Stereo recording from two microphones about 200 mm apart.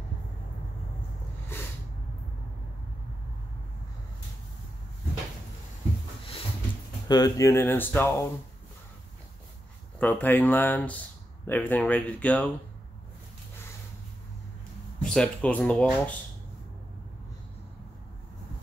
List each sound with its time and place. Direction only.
7.1 s speech: 20° left (ahead or behind)
9.9 s speech: 10° left (ahead or behind)
15.0 s speech: 5° left (ahead or behind)